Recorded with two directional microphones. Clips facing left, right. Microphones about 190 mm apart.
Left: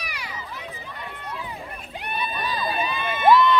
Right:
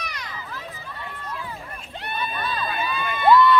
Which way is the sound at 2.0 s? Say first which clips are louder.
Even; 15° left (ahead or behind).